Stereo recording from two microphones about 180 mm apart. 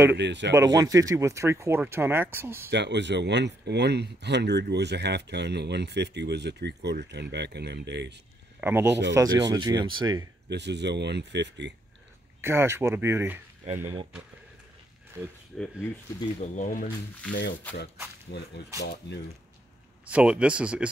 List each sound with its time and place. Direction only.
0.1 s speech: 75° right (ahead or behind)
0.6 s speech: 20° right (ahead or behind)
2.7 s speech: 70° right (ahead or behind)
8.5 s speech: 10° right (ahead or behind)
9.1 s speech: 20° right (ahead or behind)
10.5 s speech: 70° right (ahead or behind)
12.4 s speech: 15° right (ahead or behind)
15.5 s speech: 5° left (ahead or behind)
16.3 s speech: 45° left (ahead or behind)
17.3 s speech: 75° left (ahead or behind)
20.1 s speech: 5° right (ahead or behind)